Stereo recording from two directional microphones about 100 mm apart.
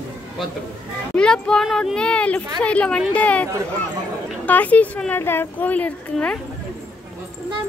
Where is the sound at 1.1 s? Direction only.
10° left (ahead or behind).